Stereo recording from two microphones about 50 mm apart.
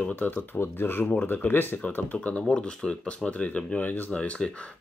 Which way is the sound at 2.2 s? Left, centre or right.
Left.